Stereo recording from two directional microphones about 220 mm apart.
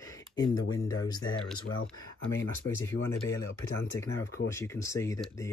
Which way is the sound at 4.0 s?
15° left (ahead or behind).